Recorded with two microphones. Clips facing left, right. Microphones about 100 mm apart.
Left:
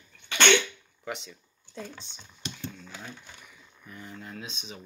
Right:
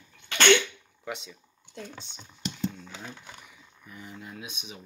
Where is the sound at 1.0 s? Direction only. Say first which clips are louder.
Even; centre (ahead or behind).